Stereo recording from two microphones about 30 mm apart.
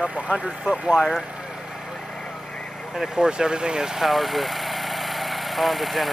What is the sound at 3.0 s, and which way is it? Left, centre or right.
Speech, centre.